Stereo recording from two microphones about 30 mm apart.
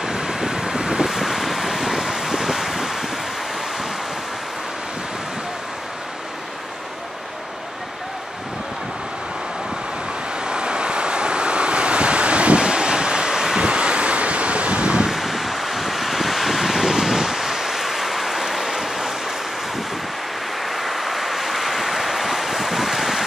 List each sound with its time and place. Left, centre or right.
0.0 s vehicle: right
1.1 s vehicle: centre
10.4 s waves: right
15.0 s wind: centre
20.6 s vehicle: centre